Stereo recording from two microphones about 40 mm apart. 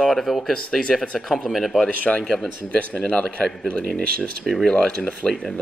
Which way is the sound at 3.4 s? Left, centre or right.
Centre.